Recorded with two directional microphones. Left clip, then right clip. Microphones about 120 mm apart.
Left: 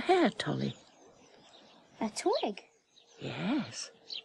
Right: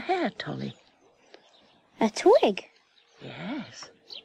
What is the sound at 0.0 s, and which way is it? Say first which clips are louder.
Speech: left 1 dB; 20° right (ahead or behind).